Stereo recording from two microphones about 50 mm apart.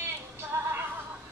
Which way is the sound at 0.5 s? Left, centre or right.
Right.